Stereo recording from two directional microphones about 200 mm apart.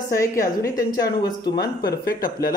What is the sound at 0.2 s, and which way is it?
Speech, 15° left (ahead or behind).